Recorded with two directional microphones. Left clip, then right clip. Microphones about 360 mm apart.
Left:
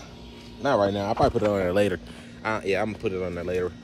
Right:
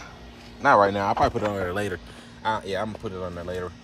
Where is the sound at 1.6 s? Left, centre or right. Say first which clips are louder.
Left 5 dB; left.